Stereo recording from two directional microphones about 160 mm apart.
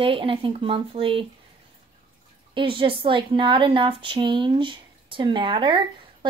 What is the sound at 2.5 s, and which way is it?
Speech, 30° right (ahead or behind).